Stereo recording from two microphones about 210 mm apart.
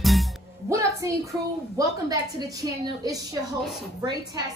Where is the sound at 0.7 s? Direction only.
15° right (ahead or behind).